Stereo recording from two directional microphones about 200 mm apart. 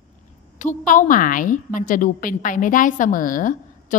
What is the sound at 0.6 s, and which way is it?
A woman's voice, 40° left (ahead or behind).